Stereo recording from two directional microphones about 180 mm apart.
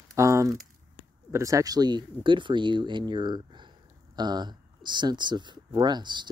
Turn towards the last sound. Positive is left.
turn(degrees=-25)  # may be behind; listen again after turning